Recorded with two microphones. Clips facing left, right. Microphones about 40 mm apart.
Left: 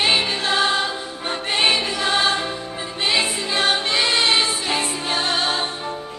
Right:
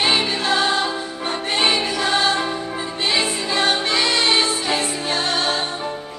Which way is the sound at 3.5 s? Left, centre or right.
Left.